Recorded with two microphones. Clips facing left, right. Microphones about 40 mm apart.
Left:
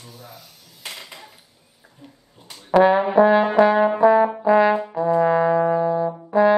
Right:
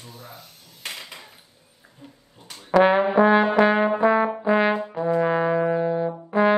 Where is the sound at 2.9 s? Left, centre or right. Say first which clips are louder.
Left 1 dB; right.